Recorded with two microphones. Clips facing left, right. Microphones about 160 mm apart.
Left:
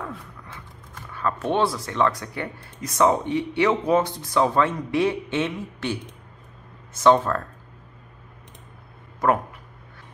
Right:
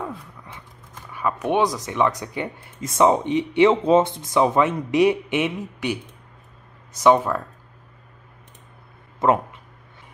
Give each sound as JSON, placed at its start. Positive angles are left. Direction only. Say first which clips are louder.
{"t": 1.1, "sound": "speech", "louder": "right 2 dB", "side_deg": -15}